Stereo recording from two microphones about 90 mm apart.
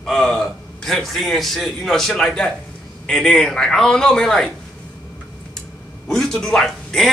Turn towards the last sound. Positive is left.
turn(degrees=5)  # may be behind; listen again after turning